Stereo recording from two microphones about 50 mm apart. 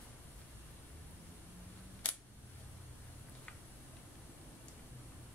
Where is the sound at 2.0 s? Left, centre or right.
Left.